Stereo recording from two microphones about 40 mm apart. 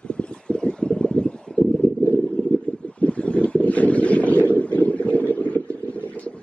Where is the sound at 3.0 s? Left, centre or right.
Left.